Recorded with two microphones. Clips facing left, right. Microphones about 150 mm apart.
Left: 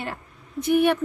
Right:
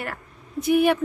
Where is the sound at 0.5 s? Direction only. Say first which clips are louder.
Right 1 dB; centre (ahead or behind).